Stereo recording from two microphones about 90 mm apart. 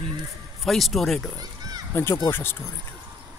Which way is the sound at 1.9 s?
25° left (ahead or behind).